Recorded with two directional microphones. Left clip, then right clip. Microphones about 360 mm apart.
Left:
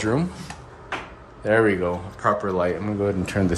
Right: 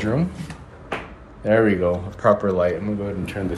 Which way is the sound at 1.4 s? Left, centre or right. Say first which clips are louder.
Right 2 dB; centre.